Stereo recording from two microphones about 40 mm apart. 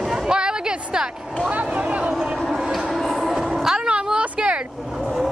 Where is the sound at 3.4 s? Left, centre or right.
Centre.